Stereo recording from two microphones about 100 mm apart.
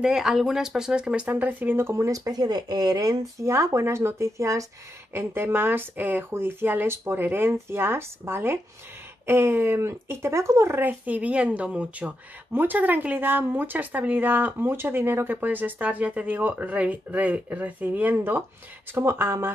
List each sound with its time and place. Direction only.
0.0 s speech: 5° right (ahead or behind); by 3.5 s 40° right (ahead or behind)
3.5 s speech: 25° right (ahead or behind)